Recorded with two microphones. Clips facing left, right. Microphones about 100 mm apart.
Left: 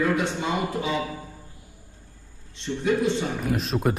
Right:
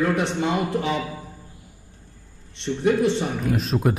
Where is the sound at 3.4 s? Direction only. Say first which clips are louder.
Right 2 dB; centre (ahead or behind).